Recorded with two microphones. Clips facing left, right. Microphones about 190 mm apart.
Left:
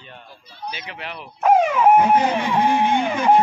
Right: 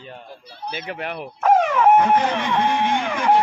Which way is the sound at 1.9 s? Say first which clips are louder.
Left 1 dB; 10° left (ahead or behind).